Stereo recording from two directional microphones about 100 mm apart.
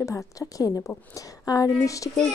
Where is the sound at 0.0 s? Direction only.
30° left (ahead or behind).